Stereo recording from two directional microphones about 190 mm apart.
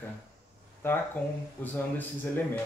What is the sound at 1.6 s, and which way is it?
Speech, 10° left (ahead or behind).